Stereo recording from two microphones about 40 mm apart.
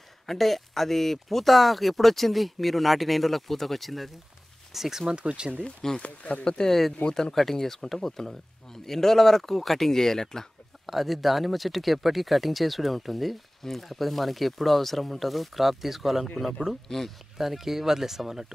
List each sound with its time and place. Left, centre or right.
0.3 s speech: centre
5.1 s speech: right
5.9 s speech: left
6.4 s speech: left
7.3 s speech: centre
10.9 s speech: centre
17.0 s speech: centre
17.4 s speech: centre